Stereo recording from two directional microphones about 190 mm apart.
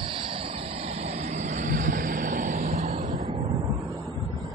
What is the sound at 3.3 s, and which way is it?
Vehicle, 20° right (ahead or behind).